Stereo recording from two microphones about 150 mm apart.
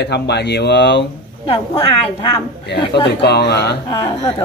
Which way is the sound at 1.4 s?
35° left (ahead or behind).